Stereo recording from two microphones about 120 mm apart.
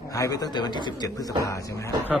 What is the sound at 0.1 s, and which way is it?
A man's voice, 30° left (ahead or behind).